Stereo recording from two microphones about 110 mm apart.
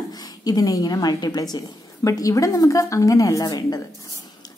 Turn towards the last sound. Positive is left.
turn(degrees=35)  # may be behind; listen again after turning